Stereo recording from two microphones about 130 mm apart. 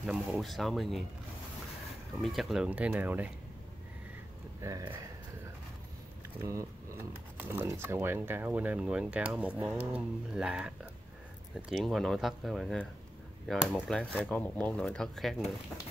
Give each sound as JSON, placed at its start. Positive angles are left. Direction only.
{"t": 0.0, "sound": "speech", "side_deg": 0}
{"t": 2.1, "sound": "speech", "side_deg": 0}
{"t": 4.6, "sound": "speech", "side_deg": -25}
{"t": 6.4, "sound": "speech", "side_deg": -20}